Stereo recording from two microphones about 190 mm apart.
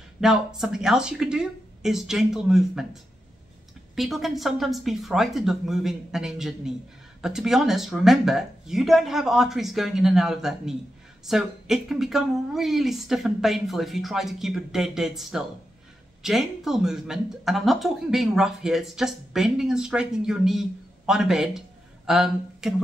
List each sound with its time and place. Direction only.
0.2 s speech: centre (ahead or behind)